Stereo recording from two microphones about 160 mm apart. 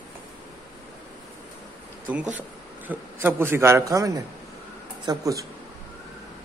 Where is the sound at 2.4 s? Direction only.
10° right (ahead or behind).